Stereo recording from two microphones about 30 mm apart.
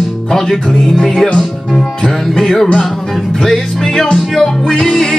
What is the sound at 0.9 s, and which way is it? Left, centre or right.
Music, left.